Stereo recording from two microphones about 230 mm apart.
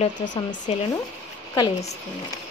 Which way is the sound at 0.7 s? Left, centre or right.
Left.